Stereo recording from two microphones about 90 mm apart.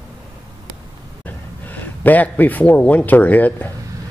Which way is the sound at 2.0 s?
20° left (ahead or behind).